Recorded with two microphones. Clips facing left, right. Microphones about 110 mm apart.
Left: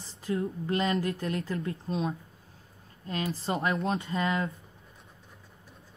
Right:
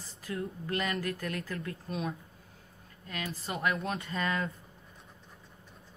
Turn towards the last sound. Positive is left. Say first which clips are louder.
# left 3 dB
turn(degrees=25)  # may be behind; listen again after turning